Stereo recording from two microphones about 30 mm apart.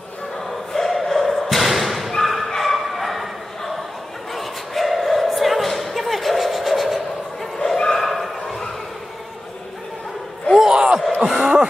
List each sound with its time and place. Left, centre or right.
0.7 s choir: centre
1.1 s thump: centre
2.5 s a sound: centre
7.5 s bow-wow: left
8.0 s dog: centre
10.7 s a sound: right